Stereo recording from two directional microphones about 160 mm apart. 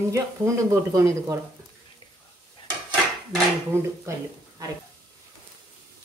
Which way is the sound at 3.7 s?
15° right (ahead or behind).